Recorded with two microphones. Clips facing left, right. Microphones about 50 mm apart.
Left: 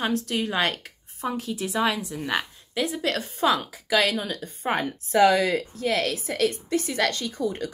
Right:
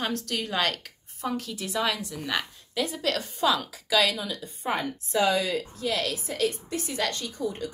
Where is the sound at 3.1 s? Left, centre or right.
Left.